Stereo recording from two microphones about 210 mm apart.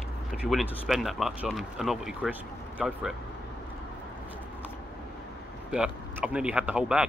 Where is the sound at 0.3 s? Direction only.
Centre (ahead or behind).